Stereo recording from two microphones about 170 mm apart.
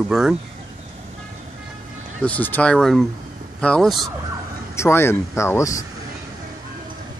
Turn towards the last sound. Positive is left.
turn(degrees=20)  # may be behind; listen again after turning